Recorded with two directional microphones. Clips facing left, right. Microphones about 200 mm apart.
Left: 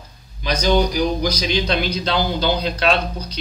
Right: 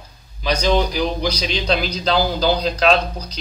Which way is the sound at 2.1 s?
35° right (ahead or behind).